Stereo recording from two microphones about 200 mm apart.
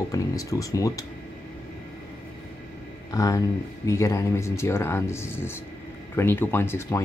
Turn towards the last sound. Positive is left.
turn(degrees=10)  # may be behind; listen again after turning